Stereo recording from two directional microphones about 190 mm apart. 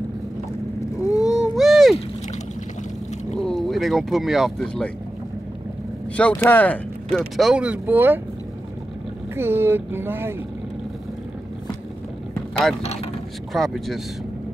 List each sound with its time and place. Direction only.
1.2 s a sound: centre (ahead or behind)
3.3 s speech: 5° left (ahead or behind)
6.1 s speech: 5° left (ahead or behind); by 8.2 s 10° right (ahead or behind)
9.3 s speech: 10° right (ahead or behind)
12.8 s speech: 35° left (ahead or behind)
13.5 s speech: centre (ahead or behind)